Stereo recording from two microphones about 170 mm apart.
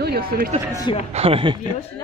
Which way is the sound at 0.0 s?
60° right (ahead or behind).